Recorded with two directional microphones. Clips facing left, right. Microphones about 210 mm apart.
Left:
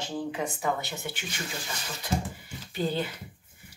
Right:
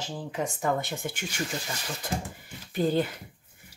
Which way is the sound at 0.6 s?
50° right (ahead or behind).